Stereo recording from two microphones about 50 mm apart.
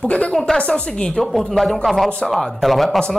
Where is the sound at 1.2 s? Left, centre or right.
Centre.